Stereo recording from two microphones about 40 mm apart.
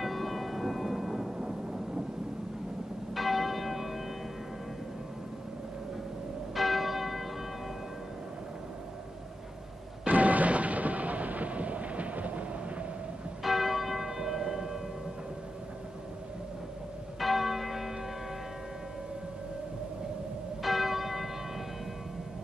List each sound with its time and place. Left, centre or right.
0.0 s music: centre
1.4 s thunder: right
3.2 s church bell: centre
6.5 s church bell: centre
10.0 s thunder: right
13.4 s church bell: centre
17.2 s church bell: centre
20.6 s church bell: centre